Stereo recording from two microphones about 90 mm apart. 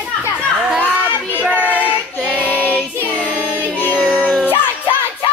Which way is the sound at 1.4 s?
15° right (ahead or behind).